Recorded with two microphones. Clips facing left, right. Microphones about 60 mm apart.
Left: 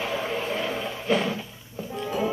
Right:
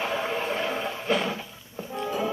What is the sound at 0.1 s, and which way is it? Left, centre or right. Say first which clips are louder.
Vehicle: even; centre.